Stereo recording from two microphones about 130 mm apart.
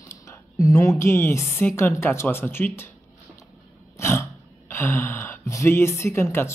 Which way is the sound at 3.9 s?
20° left (ahead or behind).